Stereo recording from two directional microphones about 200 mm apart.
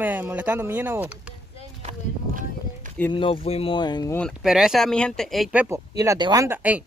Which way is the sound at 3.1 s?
25° left (ahead or behind).